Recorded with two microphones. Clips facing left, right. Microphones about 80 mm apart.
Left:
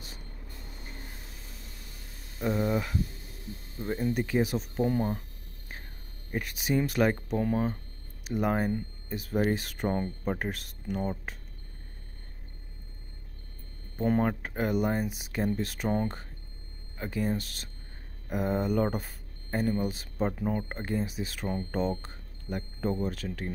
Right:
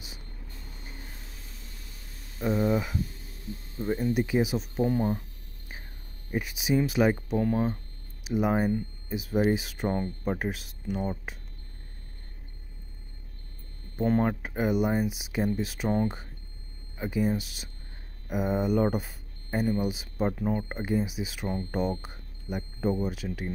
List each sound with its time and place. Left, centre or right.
2.3 s speech: centre
6.3 s speech: centre
13.9 s speech: centre